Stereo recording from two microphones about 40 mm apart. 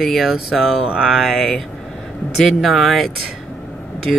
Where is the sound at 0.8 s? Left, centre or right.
Right.